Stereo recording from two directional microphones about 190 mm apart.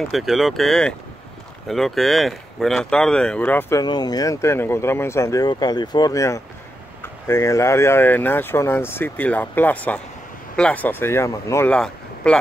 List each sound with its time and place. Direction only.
0.1 s speech: centre (ahead or behind)
3.8 s speech: 20° left (ahead or behind); by 12.4 s 5° left (ahead or behind)